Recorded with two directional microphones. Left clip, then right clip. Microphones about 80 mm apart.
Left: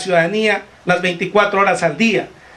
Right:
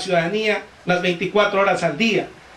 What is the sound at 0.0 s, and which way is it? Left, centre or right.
A man's voice, left.